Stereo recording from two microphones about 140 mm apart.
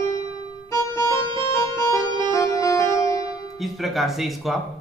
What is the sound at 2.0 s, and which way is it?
Organ, 35° right (ahead or behind).